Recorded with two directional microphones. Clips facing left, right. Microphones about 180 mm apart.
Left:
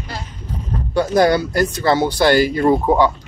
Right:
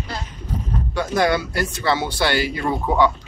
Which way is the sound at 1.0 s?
35° left (ahead or behind).